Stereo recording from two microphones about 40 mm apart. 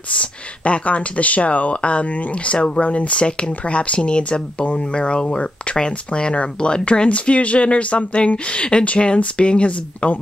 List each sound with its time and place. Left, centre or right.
0.1 s speech: left